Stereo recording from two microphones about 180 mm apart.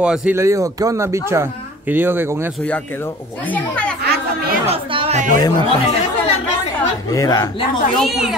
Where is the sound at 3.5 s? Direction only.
5° left (ahead or behind).